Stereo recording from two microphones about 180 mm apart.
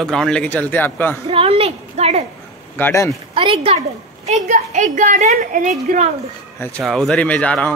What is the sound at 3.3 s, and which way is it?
Speech, 30° right (ahead or behind).